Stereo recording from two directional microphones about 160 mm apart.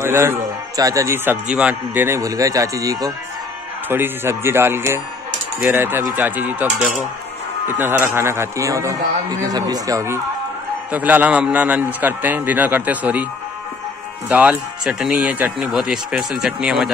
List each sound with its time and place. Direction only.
0.0 s a man's voice: 15° right (ahead or behind)
7.7 s a man's voice: 15° right (ahead or behind)
14.3 s speech: 10° right (ahead or behind)